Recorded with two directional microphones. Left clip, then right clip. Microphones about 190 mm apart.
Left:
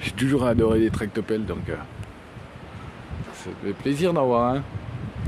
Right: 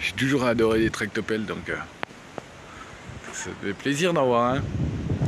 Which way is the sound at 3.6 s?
5° left (ahead or behind).